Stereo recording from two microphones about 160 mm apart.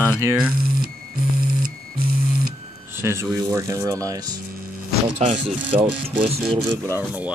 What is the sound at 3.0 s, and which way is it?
Speech, 15° right (ahead or behind).